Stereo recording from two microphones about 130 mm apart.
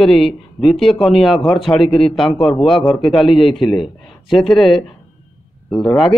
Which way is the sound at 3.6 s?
40° left (ahead or behind).